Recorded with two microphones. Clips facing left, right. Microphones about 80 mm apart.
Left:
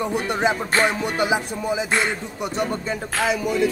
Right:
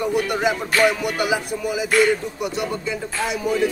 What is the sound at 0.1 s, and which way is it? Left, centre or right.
Music, left.